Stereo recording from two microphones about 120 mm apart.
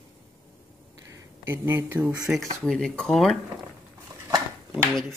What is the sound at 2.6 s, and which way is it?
Speech, 5° left (ahead or behind).